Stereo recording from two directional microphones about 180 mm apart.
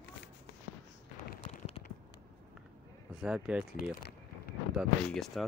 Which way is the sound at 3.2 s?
5° right (ahead or behind).